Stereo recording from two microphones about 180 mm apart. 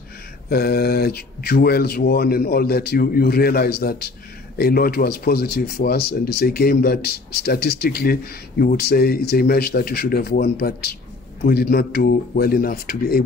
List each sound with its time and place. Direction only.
0.5 s speech: 60° left (ahead or behind)